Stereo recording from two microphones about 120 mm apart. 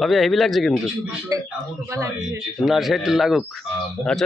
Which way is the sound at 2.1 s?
5° right (ahead or behind).